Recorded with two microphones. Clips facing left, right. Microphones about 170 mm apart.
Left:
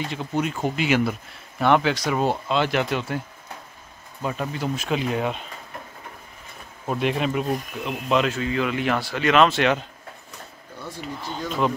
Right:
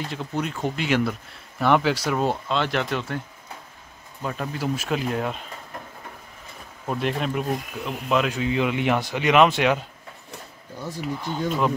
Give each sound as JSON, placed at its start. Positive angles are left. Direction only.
{"t": 0.0, "sound": "speech", "side_deg": 0}
{"t": 4.2, "sound": "speech", "side_deg": 5}
{"t": 6.9, "sound": "speech", "side_deg": 5}
{"t": 8.3, "sound": "speech", "side_deg": -15}
{"t": 10.8, "sound": "speech", "side_deg": -10}